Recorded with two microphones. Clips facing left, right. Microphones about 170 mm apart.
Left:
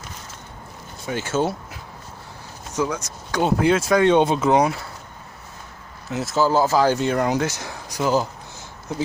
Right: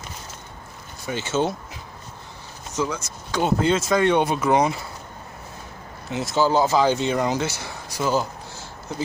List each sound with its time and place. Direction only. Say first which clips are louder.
1.0 s speech: left 1 dB; 10° left (ahead or behind)
2.7 s speech: left 2 dB; 15° left (ahead or behind)
6.0 s speech: left 1 dB; 5° left (ahead or behind)